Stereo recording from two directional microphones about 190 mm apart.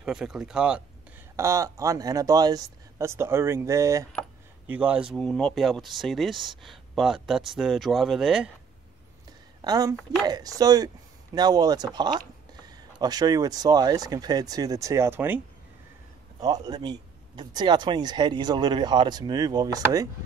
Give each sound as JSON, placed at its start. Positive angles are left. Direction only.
{"t": 0.0, "sound": "speech", "side_deg": -5}
{"t": 1.3, "sound": "speech", "side_deg": -15}
{"t": 9.6, "sound": "a woman's voice", "side_deg": -20}